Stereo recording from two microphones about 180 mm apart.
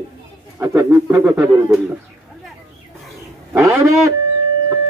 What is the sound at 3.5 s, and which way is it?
Speech, 15° right (ahead or behind).